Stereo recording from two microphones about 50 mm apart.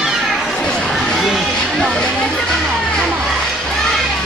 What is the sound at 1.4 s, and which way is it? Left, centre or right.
Music, centre.